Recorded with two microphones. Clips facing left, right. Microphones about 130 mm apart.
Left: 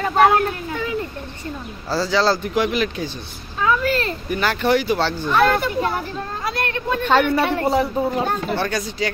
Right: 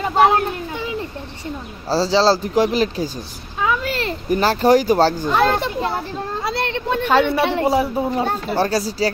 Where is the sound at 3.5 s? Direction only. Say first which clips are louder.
Left 2 dB; 15° right (ahead or behind).